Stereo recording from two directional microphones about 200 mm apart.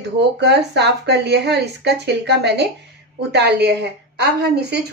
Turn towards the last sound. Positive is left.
turn(degrees=-55)  # may be behind; listen again after turning